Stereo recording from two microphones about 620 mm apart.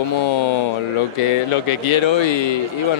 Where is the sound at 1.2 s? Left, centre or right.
Left.